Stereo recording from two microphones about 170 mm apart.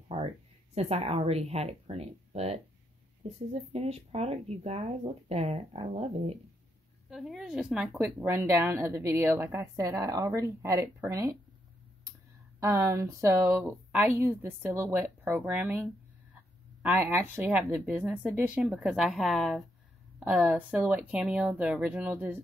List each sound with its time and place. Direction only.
0.1 s a sound: 30° right (ahead or behind)
0.7 s speech: 40° right (ahead or behind)
7.1 s a woman's voice: centre (ahead or behind); by 11.3 s 20° right (ahead or behind)
12.5 s speech: 15° right (ahead or behind)
16.8 s speech: 10° right (ahead or behind)